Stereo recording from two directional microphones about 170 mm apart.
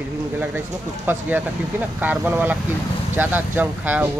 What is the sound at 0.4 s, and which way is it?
Speech, 10° right (ahead or behind).